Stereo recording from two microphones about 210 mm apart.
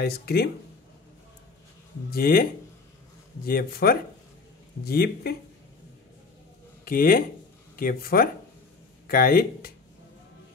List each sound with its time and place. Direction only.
0.0 s speech: 50° left (ahead or behind)
2.0 s speech: 45° left (ahead or behind)
3.4 s speech: 45° left (ahead or behind)
6.8 s speech: 45° left (ahead or behind)